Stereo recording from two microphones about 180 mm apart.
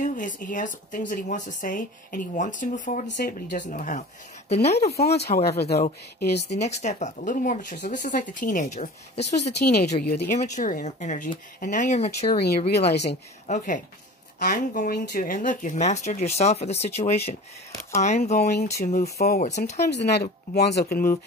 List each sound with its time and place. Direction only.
0.0 s speech: 45° left (ahead or behind)
3.1 s speech: 65° left (ahead or behind); by 4.7 s 35° left (ahead or behind)
4.8 s speech: 60° left (ahead or behind)
6.5 s speech: 40° left (ahead or behind)
9.2 s speech: 65° left (ahead or behind)
10.4 s speech: 45° left (ahead or behind)
12.4 s speech: 65° left (ahead or behind)
13.5 s speech: 40° left (ahead or behind)
14.4 s speech: 55° left (ahead or behind); by 17.4 s 40° left (ahead or behind)
19.1 s speech: 60° left (ahead or behind)
19.4 s speech: 40° left (ahead or behind)
19.9 s speech: 70° left (ahead or behind)